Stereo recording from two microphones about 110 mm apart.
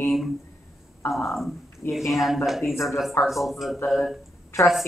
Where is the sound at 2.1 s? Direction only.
Centre (ahead or behind).